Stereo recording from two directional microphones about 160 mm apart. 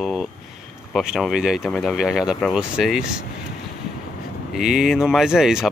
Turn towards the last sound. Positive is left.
turn(degrees=-5)  # may be behind; listen again after turning